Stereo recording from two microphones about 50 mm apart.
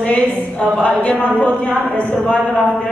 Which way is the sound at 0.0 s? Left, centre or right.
Left.